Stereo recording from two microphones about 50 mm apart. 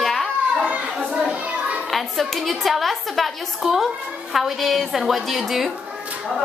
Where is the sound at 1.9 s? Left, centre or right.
Centre.